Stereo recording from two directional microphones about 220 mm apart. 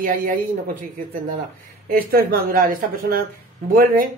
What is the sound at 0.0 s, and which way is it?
Speech, 40° right (ahead or behind).